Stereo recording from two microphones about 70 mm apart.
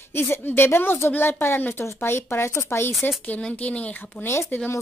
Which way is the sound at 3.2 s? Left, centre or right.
Left.